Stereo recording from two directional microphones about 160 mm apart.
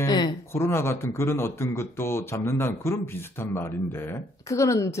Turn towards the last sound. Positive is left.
turn(degrees=20)  # may be behind; listen again after turning